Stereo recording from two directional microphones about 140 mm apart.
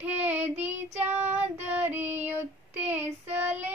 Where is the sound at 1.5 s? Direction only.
15° right (ahead or behind).